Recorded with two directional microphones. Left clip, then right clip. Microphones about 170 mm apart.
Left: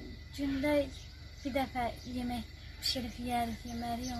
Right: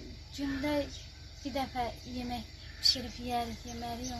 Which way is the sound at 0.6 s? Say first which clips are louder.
Left 3 dB; centre (ahead or behind).